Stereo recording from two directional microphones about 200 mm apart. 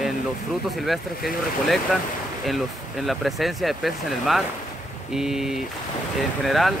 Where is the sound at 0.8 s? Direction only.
Centre (ahead or behind).